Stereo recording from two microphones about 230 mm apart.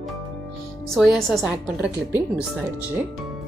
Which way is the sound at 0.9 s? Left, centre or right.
Centre.